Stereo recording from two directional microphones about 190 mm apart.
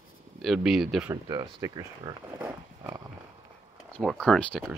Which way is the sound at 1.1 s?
20° right (ahead or behind).